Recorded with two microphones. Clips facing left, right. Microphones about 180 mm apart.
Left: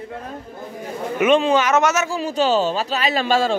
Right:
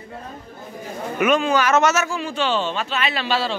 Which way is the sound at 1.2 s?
30° left (ahead or behind).